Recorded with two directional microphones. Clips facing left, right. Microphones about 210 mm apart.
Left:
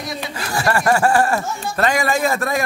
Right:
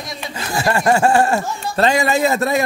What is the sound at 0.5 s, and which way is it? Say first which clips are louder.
Speech: right 1 dB; 20° right (ahead or behind).